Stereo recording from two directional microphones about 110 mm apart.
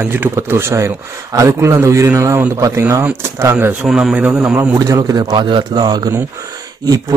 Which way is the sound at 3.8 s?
5° right (ahead or behind).